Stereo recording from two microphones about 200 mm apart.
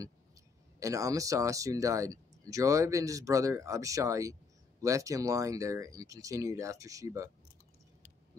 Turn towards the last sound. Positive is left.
turn(degrees=-15)  # may be behind; listen again after turning